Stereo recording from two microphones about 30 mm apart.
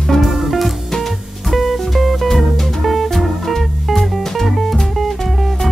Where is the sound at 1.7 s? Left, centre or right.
Centre.